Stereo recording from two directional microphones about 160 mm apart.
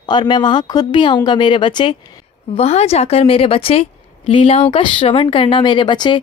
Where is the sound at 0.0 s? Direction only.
25° left (ahead or behind).